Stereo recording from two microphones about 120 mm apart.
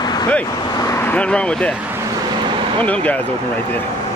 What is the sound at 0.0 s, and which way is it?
Vehicle, 35° left (ahead or behind).